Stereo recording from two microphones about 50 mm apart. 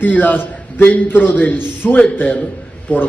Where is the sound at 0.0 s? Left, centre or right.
Left.